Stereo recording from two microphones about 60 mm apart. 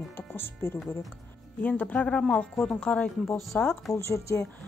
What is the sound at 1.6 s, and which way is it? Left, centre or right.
Speech, left.